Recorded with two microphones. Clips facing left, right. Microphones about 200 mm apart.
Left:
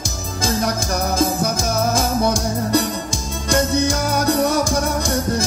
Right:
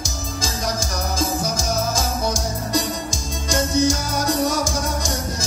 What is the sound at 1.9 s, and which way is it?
Music, 60° left (ahead or behind).